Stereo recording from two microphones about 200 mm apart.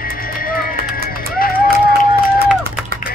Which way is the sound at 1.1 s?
45° left (ahead or behind).